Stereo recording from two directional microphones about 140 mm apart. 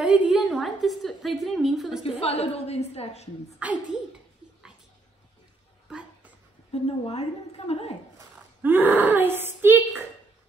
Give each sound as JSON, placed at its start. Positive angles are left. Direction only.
{"t": 0.0, "sound": "a woman's voice", "side_deg": -10}
{"t": 2.0, "sound": "a woman's voice", "side_deg": 45}
{"t": 3.5, "sound": "speech", "side_deg": -10}
{"t": 5.9, "sound": "a sound", "side_deg": -5}
{"t": 6.7, "sound": "a woman's voice", "side_deg": 45}
{"t": 8.6, "sound": "speech", "side_deg": -15}